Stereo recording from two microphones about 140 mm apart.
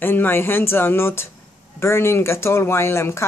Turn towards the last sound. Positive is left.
turn(degrees=20)  # may be behind; listen again after turning